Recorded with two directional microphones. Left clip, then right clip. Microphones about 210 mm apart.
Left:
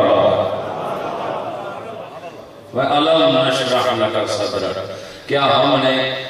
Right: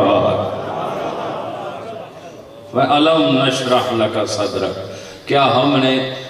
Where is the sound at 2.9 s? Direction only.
5° right (ahead or behind).